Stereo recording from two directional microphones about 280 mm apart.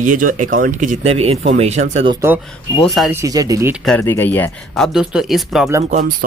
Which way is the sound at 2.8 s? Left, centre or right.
Centre.